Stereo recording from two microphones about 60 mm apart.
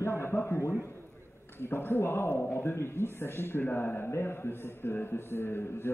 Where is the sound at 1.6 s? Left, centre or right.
Left.